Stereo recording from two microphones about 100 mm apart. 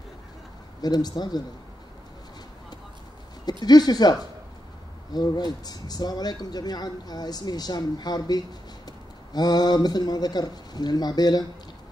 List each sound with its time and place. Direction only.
0.7 s speech: 40° left (ahead or behind)
3.6 s speech: 45° left (ahead or behind)